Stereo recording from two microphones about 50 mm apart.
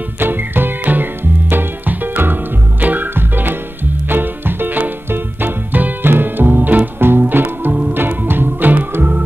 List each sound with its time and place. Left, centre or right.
0.2 s music: right
7.9 s organ: right